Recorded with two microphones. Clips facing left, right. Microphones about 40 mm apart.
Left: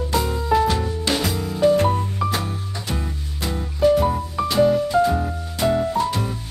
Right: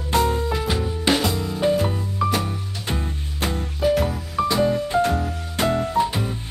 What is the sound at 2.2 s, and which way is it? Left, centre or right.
Music, centre.